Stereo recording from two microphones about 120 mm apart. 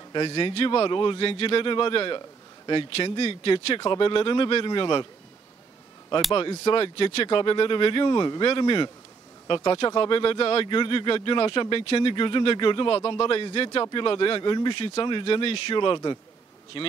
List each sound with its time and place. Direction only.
0.1 s a man's voice: 45° left (ahead or behind)
6.3 s a man's voice: 50° left (ahead or behind)